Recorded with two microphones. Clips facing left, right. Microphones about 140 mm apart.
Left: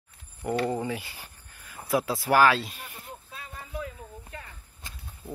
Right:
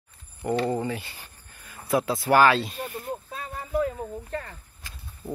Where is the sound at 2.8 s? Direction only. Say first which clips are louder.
Right 11 dB; 45° right (ahead or behind).